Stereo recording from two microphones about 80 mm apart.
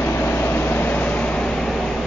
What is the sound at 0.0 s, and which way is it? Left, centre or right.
Vehicle, left.